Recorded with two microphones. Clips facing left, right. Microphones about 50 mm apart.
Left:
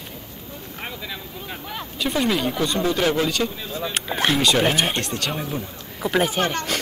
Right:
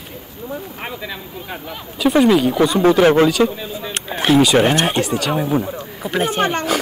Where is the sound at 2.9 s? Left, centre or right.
Right.